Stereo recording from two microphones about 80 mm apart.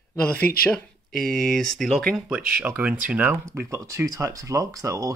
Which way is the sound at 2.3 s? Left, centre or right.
Centre.